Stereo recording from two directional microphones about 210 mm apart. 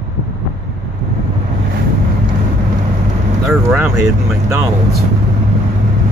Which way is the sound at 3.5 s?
5° right (ahead or behind).